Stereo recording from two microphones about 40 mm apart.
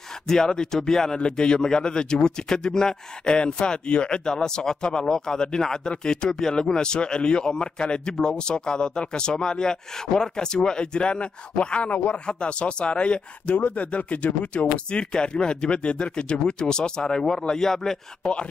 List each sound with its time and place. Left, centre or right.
0.3 s speech: centre; by 12.2 s left
12.3 s speech: left